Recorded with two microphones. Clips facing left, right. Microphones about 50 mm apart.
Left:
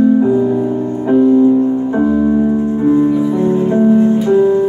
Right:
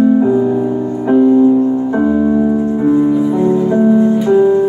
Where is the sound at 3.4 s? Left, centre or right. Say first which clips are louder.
Right 1 dB; left.